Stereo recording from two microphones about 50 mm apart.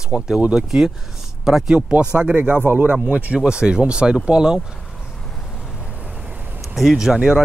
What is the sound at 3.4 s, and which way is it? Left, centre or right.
Speech, centre.